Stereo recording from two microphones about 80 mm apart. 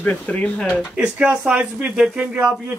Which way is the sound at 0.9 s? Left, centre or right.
Centre.